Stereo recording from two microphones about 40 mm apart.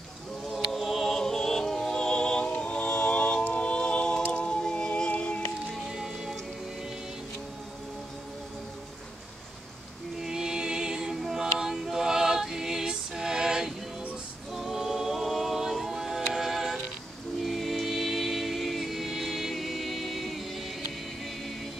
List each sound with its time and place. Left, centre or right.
0.7 s music: centre; by 2.4 s left
2.4 s a capella: left
4.3 s music: left
5.9 s music: centre
10.2 s music: centre
11.1 s a sound: centre
14.5 s choir: centre
17.4 s music: centre